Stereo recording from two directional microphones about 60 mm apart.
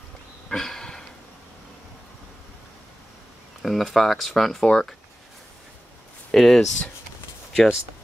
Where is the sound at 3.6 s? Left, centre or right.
Centre.